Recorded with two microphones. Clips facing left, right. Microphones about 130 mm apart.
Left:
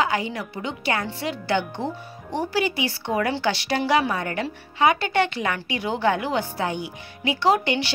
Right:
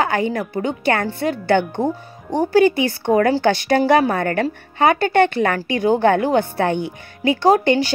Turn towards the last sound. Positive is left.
turn(degrees=-45)  # may be behind; listen again after turning